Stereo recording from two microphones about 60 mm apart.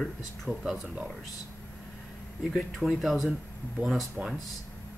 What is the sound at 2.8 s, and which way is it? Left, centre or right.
Speech, right.